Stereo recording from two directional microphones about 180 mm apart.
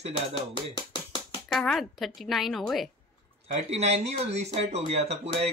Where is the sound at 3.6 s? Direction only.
35° right (ahead or behind).